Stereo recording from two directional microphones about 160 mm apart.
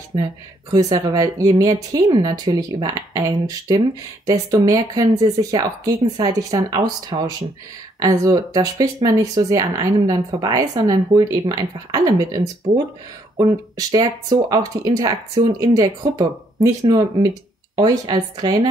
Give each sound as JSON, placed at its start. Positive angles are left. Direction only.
{"t": 0.1, "sound": "speech", "side_deg": -25}
{"t": 12.7, "sound": "speech", "side_deg": -35}
{"t": 13.4, "sound": "speech", "side_deg": -20}